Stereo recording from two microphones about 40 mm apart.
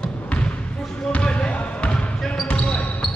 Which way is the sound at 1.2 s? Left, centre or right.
Left.